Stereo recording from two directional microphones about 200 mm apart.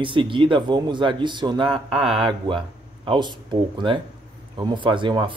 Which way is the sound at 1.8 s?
Centre (ahead or behind).